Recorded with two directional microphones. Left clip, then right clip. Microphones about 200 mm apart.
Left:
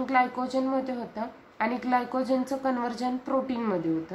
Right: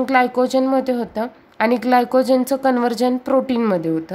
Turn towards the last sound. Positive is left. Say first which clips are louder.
# right 10 dB
turn(degrees=-55)  # may be behind; listen again after turning